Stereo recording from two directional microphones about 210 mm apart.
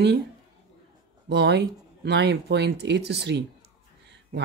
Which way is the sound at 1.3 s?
55° right (ahead or behind).